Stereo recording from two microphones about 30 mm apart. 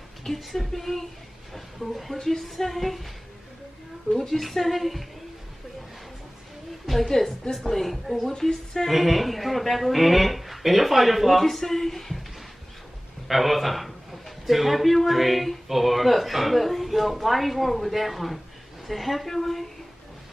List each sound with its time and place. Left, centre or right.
0.4 s speech: centre
4.1 s speech: centre
7.1 s speech: centre
8.3 s a woman's voice: centre
8.8 s speech: centre
11.4 s speech: centre
13.3 s speech: centre